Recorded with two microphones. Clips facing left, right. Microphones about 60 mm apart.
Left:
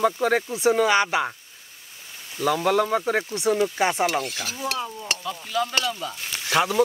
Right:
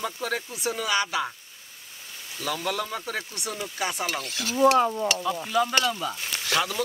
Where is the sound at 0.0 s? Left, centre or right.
Left.